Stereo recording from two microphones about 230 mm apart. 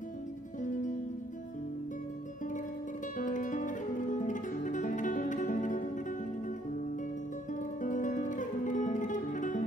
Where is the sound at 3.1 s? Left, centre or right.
Left.